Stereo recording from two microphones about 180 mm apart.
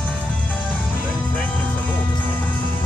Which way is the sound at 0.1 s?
5° left (ahead or behind).